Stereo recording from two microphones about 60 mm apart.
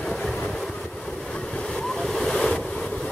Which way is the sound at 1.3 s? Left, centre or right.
Centre.